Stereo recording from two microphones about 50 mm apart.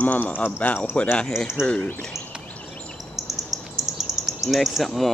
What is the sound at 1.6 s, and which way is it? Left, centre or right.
Speech, left.